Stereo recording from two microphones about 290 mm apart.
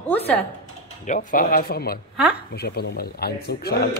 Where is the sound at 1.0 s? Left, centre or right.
Left.